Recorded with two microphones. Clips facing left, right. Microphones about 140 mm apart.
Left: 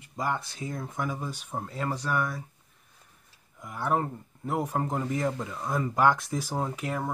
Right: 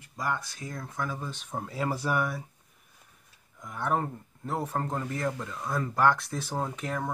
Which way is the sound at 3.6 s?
5° left (ahead or behind).